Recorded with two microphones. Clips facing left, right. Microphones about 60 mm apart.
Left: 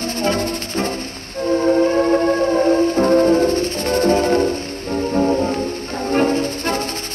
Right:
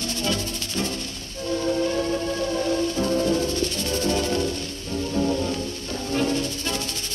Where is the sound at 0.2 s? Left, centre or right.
Left.